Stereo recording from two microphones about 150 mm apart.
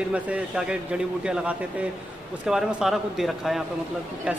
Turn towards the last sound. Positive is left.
turn(degrees=-5)  # may be behind; listen again after turning